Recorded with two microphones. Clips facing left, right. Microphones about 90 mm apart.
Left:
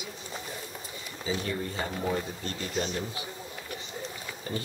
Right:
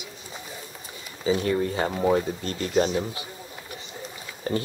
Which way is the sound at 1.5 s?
65° right (ahead or behind).